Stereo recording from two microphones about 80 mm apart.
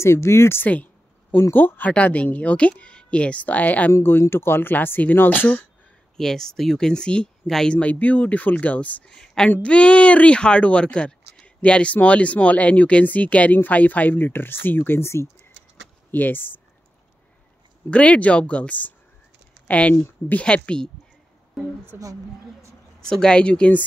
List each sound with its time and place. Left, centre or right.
0.0 s speech: left; by 3.9 s centre
3.9 s speech: left
6.1 s speech: centre
9.1 s a woman's voice: centre; by 16.5 s left
17.8 s speech: centre
21.9 s a woman's voice: right
22.9 s speech: centre